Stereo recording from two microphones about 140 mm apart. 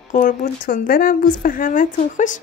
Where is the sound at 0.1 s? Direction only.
70° left (ahead or behind).